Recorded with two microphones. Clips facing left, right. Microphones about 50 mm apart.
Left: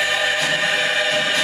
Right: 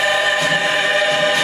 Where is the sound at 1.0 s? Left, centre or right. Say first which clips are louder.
Right 4 dB; centre.